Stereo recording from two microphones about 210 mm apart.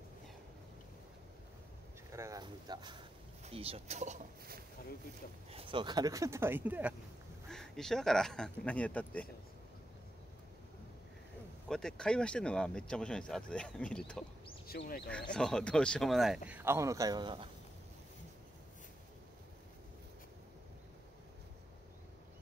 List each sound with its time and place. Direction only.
2.0 s speech: 15° right (ahead or behind); by 9.3 s 5° left (ahead or behind)
11.7 s speech: 5° left (ahead or behind)
14.7 s speech: 45° left (ahead or behind)
15.3 s speech: 5° left (ahead or behind); by 17.5 s 20° right (ahead or behind)